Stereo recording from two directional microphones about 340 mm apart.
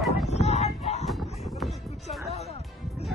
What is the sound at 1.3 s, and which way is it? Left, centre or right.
Music, centre.